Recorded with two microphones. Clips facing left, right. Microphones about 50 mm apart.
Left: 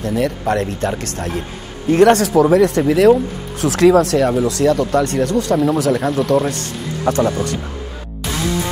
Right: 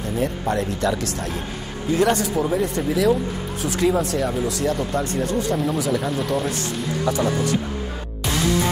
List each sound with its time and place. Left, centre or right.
0.0 s speech: left
1.9 s speech: left
3.6 s speech: left
7.1 s speech: left